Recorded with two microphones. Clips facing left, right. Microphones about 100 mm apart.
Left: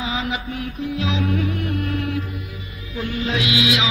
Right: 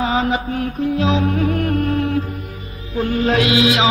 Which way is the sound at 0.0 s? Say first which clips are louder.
Right 7 dB; 40° right (ahead or behind).